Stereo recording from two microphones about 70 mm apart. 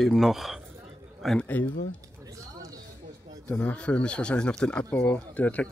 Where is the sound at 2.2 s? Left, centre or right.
Right.